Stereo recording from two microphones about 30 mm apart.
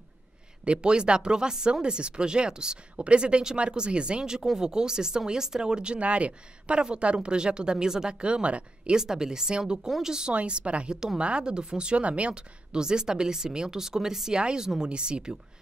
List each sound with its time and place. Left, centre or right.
0.7 s speech: right
5.9 s speech: right
8.2 s speech: right
8.9 s speech: right
10.3 s speech: right
11.1 s speech: right
14.3 s speech: right